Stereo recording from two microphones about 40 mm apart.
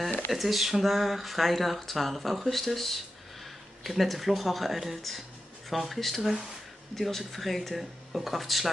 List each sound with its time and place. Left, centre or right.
0.3 s speech: centre